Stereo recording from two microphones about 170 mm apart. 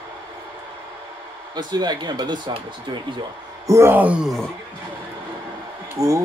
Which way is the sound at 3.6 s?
15° right (ahead or behind).